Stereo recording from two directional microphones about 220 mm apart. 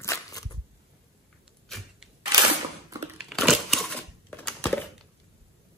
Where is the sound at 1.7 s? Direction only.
Centre (ahead or behind).